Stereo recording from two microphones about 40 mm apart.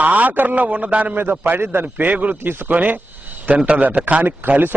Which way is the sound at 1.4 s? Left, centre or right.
Right.